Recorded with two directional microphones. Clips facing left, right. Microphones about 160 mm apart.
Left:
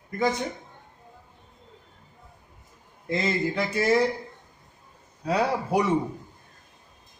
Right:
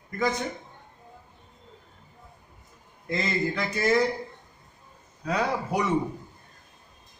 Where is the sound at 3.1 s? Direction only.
25° left (ahead or behind).